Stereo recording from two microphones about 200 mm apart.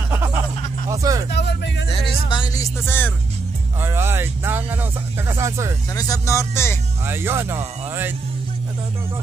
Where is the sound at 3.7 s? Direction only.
10° right (ahead or behind).